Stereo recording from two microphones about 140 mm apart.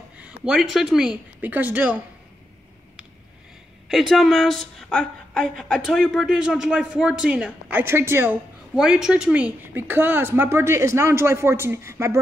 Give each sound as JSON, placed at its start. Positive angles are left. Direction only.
{"t": 0.2, "sound": "a woman's voice", "side_deg": -5}
{"t": 3.9, "sound": "a woman's voice", "side_deg": 0}
{"t": 8.7, "sound": "a woman's voice", "side_deg": -5}